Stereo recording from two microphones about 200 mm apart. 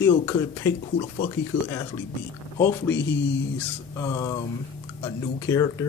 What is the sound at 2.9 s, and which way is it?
Speech, 65° left (ahead or behind).